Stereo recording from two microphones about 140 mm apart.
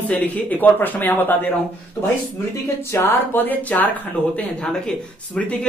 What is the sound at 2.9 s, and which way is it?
Speech, 15° left (ahead or behind).